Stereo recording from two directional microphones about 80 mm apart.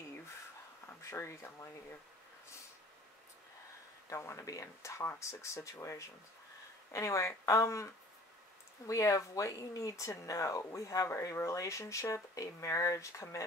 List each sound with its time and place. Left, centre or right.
1.1 s speech: left
4.1 s speech: left